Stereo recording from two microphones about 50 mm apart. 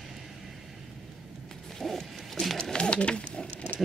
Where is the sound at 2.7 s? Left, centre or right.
Centre.